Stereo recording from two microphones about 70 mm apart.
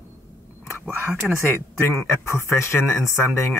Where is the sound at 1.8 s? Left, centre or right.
Left.